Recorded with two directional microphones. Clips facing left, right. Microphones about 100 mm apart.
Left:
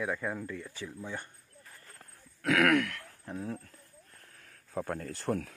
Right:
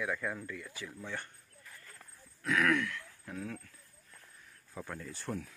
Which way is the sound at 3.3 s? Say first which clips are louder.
Left 4 dB; 30° left (ahead or behind).